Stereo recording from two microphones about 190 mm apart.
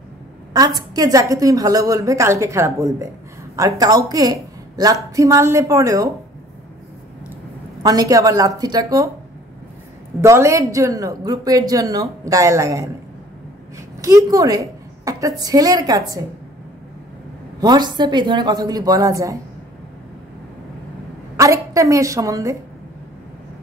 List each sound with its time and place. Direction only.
0.5 s a woman's voice: 20° right (ahead or behind)
7.8 s a woman's voice: 20° right (ahead or behind)
10.2 s a woman's voice: 15° right (ahead or behind)
14.0 s a woman's voice: 15° right (ahead or behind)
17.6 s a woman's voice: 20° right (ahead or behind)
21.4 s a woman's voice: 15° right (ahead or behind)